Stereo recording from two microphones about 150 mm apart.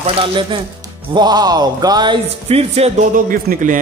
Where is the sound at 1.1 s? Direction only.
30° right (ahead or behind).